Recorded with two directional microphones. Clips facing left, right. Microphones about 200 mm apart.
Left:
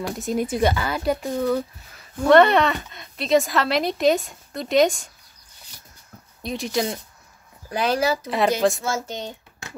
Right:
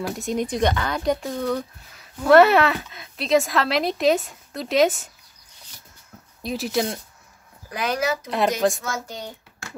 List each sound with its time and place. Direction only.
0.0 s a woman's voice: centre (ahead or behind)
6.4 s a woman's voice: 5° right (ahead or behind)
7.7 s a child's voice: 30° left (ahead or behind)